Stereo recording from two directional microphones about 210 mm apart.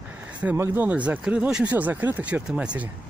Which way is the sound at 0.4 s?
10° right (ahead or behind).